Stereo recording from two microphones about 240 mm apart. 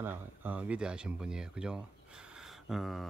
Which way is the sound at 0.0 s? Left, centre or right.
Centre.